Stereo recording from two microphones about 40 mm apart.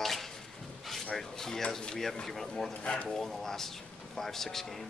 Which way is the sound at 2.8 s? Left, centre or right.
Left.